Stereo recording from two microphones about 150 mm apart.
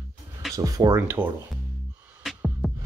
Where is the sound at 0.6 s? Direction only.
25° right (ahead or behind).